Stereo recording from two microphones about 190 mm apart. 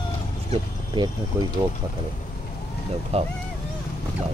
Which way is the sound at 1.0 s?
25° right (ahead or behind).